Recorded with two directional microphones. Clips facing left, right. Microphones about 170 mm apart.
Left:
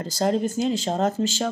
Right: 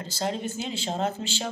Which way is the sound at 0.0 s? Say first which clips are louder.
Left 7 dB; 45° left (ahead or behind).